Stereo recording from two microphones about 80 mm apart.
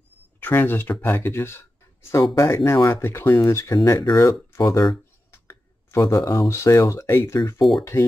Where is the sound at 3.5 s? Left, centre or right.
Left.